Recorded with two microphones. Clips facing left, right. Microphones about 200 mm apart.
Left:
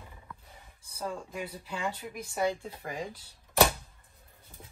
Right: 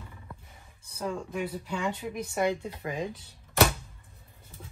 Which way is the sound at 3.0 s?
55° right (ahead or behind).